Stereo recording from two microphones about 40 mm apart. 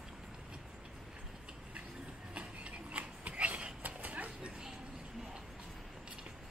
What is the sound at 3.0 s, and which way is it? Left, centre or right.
Dog, right.